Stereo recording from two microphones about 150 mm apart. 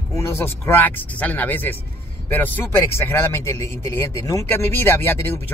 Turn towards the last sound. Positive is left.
turn(degrees=15)  # may be behind; listen again after turning